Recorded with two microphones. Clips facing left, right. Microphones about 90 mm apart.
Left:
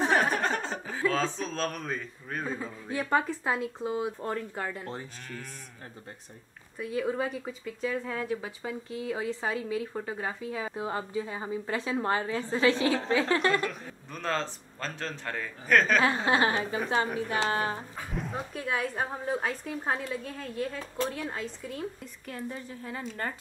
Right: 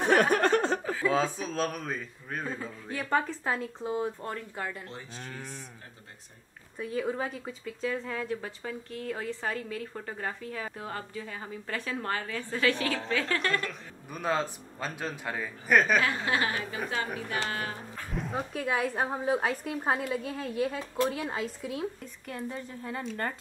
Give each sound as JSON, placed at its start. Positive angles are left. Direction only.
{"t": 0.1, "sound": "chuckle", "side_deg": -55}
{"t": 1.0, "sound": "a man's voice", "side_deg": -10}
{"t": 5.3, "sound": "speech", "side_deg": -20}
{"t": 6.8, "sound": "a woman's voice", "side_deg": 0}
{"t": 13.5, "sound": "a man's voice", "side_deg": 5}
{"t": 14.1, "sound": "a man's voice", "side_deg": -10}
{"t": 16.0, "sound": "a woman's voice", "side_deg": 30}
{"t": 18.1, "sound": "a man's voice", "side_deg": 0}